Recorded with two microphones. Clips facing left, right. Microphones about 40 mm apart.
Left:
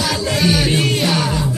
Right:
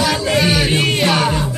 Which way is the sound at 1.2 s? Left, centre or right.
Right.